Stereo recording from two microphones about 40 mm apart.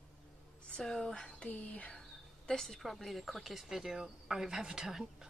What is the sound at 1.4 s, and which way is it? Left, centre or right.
Speech, left.